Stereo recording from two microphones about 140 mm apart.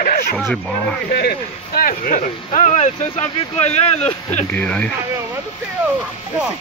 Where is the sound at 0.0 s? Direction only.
90° left.